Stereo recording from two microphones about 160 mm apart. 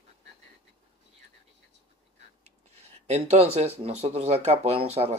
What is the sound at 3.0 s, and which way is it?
Speech, 40° right (ahead or behind).